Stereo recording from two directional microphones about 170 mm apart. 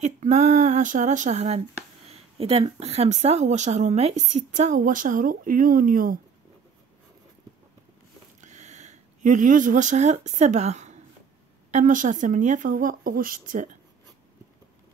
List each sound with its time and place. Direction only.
0.0 s speech: 45° right (ahead or behind)
8.4 s speech: 45° right (ahead or behind)